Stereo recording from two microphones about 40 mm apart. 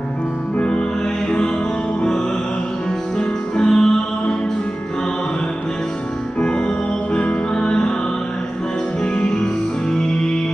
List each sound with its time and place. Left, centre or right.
3.2 s music: centre
6.4 s music: left
9.0 s music: left